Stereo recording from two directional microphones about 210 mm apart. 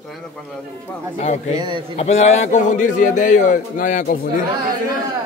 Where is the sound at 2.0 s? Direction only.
30° left (ahead or behind).